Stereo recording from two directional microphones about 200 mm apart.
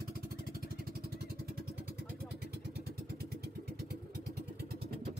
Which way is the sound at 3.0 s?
55° right (ahead or behind).